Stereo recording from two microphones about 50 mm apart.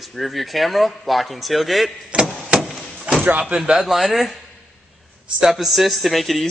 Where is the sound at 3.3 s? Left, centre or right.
Centre.